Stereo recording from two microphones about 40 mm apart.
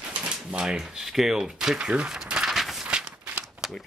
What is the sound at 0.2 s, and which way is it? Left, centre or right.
Speech, right.